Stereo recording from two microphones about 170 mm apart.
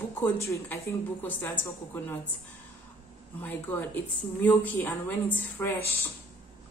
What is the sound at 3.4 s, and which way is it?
Speech, 10° left (ahead or behind).